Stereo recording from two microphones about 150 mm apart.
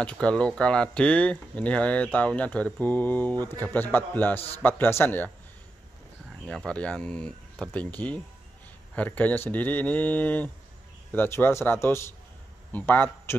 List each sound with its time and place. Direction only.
0.0 s speech: 5° left (ahead or behind)
6.4 s speech: 5° left (ahead or behind)
8.9 s speech: 10° left (ahead or behind)